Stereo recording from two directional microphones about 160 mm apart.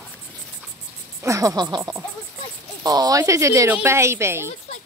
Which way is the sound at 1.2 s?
20° right (ahead or behind).